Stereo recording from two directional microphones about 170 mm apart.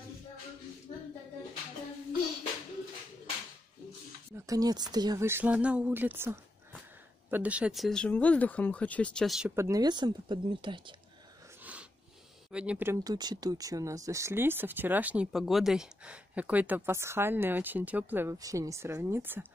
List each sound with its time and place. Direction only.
4.5 s speech: 20° right (ahead or behind); by 9.5 s centre (ahead or behind)
9.6 s speech: 20° right (ahead or behind)
12.4 s speech: 5° right (ahead or behind)